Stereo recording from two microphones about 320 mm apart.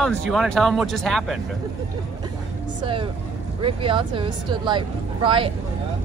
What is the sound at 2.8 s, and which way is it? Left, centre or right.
Speech, centre.